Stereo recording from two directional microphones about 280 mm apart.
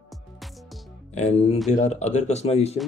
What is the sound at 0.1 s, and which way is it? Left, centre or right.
Music, centre.